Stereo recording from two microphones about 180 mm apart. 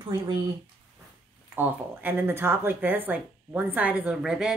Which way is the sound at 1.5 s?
10° right (ahead or behind).